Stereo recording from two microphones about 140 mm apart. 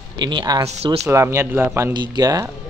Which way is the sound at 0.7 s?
45° right (ahead or behind).